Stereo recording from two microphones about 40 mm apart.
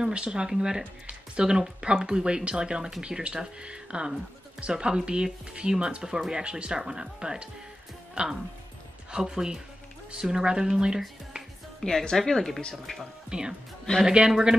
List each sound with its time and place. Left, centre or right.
0.0 s speech: right
6.1 s speech: centre
11.8 s speech: centre
13.3 s speech: centre
13.9 s speech: centre